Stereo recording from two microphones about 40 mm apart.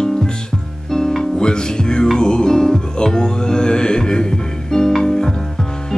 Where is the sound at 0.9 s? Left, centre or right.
Centre.